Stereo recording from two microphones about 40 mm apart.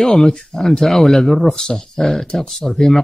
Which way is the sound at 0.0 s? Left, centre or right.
Centre.